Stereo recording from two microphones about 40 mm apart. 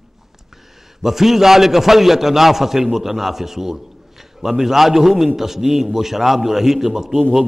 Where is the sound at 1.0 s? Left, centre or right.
Centre.